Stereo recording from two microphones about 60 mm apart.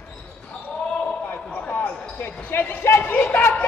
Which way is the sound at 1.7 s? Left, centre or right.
Left.